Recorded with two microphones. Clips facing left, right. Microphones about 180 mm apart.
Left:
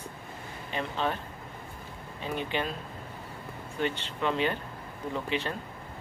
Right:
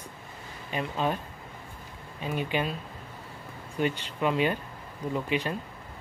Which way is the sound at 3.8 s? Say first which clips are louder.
Right 3 dB; 10° right (ahead or behind).